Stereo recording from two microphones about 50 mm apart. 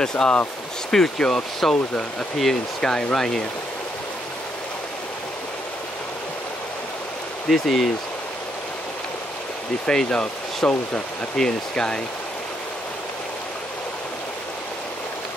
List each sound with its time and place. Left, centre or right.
0.0 s speech: centre
7.4 s speech: centre
9.8 s speech: centre